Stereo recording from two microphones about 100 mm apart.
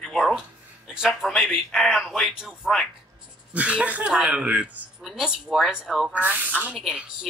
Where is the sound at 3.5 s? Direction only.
10° right (ahead or behind).